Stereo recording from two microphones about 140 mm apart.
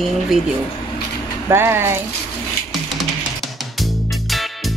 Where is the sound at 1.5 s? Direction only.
15° right (ahead or behind).